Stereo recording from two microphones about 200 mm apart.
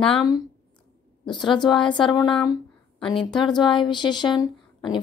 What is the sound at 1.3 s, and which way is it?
A woman's voice, 20° left (ahead or behind).